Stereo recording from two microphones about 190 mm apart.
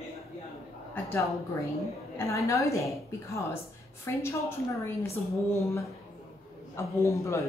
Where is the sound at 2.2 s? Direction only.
15° left (ahead or behind).